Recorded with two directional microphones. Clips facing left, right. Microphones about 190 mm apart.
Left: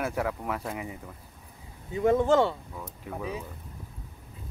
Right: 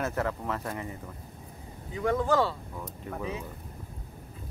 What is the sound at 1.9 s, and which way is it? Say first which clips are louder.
Speech: left 4 dB; 25° left (ahead or behind).